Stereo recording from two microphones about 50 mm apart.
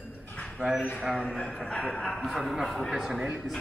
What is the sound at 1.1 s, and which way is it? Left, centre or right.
A man's voice, centre.